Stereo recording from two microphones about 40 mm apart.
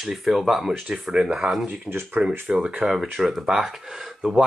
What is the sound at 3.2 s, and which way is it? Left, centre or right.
Speech, centre.